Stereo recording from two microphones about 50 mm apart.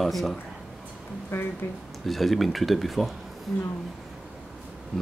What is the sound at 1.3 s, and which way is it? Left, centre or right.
Speech, left.